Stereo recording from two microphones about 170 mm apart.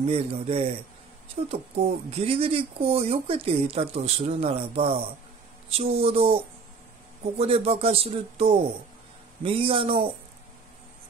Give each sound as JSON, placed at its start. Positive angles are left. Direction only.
{"t": 0.0, "sound": "speech", "side_deg": -35}